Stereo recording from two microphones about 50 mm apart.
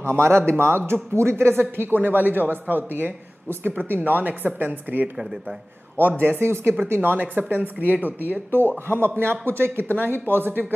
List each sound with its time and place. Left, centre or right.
0.0 s speech: right
1.8 s speech: right
6.2 s speech: right
6.9 s speech: right